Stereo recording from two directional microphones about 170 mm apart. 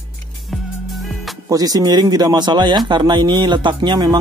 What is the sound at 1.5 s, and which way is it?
Speech, 20° right (ahead or behind).